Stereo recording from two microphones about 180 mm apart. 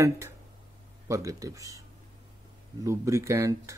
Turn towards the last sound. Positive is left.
turn(degrees=-15)  # may be behind; listen again after turning